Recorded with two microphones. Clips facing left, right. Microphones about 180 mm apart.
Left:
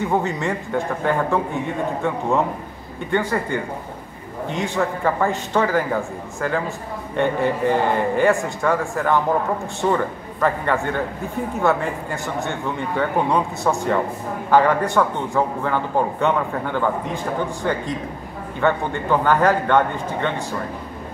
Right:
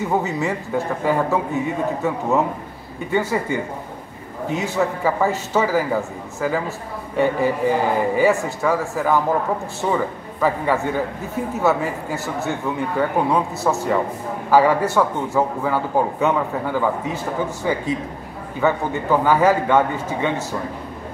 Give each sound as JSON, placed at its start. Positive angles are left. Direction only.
{"t": 0.0, "sound": "a man's voice", "side_deg": -5}